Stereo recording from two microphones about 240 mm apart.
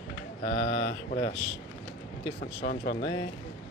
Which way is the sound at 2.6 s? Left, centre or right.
Left.